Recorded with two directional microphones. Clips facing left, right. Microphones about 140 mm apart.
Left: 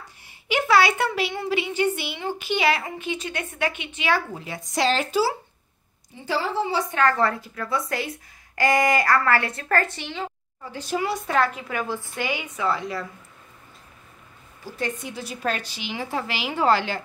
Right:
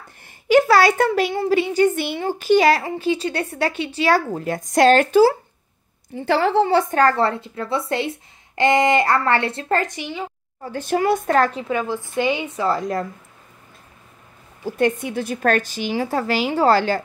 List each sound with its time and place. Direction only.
0.5 s speech: 40° right (ahead or behind)
6.2 s a woman's voice: 65° right (ahead or behind)
7.0 s a woman's voice: 30° right (ahead or behind); by 10.2 s 15° right (ahead or behind)
10.6 s a woman's voice: 55° right (ahead or behind)
11.7 s a woman's voice: 15° right (ahead or behind); by 13.0 s 45° right (ahead or behind)
14.6 s a woman's voice: 55° right (ahead or behind); by 17.0 s 40° right (ahead or behind)